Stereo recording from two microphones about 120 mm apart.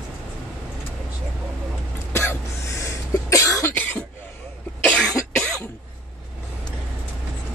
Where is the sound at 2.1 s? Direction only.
25° left (ahead or behind); by 5.1 s 10° left (ahead or behind).